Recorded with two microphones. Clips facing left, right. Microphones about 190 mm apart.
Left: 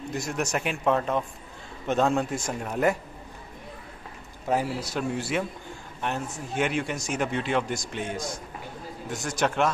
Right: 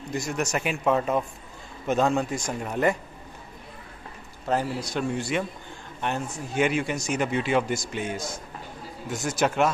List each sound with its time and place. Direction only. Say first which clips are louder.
0.1 s speech: right 2 dB; centre (ahead or behind)
4.5 s speech: even; 5° left (ahead or behind)